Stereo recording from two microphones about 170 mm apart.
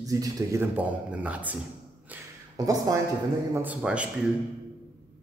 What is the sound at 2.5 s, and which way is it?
Speech, 20° right (ahead or behind).